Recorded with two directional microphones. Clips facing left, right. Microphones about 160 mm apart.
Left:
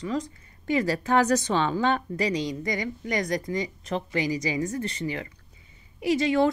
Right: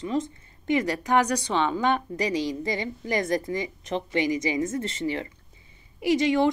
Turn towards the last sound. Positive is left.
turn(degrees=-20)  # may be behind; listen again after turning